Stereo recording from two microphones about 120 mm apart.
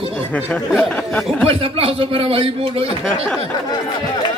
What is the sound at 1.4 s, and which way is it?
A man's voice, 50° right (ahead or behind).